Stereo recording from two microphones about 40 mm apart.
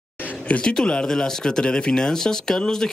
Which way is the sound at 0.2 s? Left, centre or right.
Left.